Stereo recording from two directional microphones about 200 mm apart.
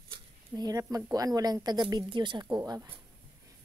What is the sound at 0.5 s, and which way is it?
A woman's voice, 15° right (ahead or behind).